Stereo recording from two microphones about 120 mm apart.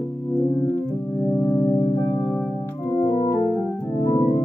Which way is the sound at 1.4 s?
25° left (ahead or behind).